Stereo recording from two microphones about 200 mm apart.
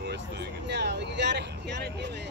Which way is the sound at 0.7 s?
55° right (ahead or behind).